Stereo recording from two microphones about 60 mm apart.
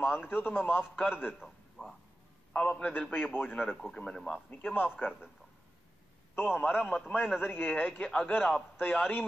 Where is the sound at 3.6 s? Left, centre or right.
Centre.